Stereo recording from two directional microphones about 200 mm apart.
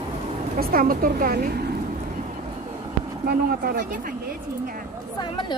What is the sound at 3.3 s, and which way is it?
Speech, 50° right (ahead or behind).